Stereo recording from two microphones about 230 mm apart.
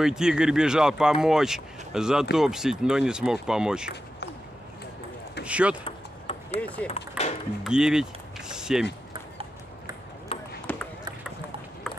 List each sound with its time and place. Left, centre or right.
0.0 s speech: centre
5.4 s speech: centre
5.9 s chop: left
6.6 s speech: centre
10.3 s ping: left
10.7 s a sound: centre